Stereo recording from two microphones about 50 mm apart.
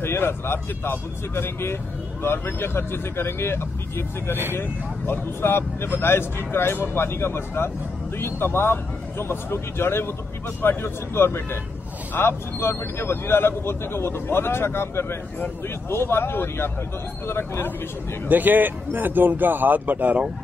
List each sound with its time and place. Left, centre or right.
0.0 s speech: left
18.3 s a man's voice: right